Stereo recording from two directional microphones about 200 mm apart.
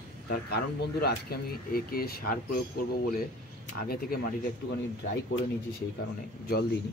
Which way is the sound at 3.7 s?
50° left (ahead or behind).